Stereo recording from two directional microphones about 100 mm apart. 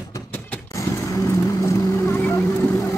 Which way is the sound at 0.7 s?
35° left (ahead or behind).